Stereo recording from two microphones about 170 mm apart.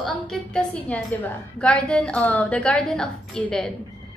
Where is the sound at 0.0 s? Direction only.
5° left (ahead or behind).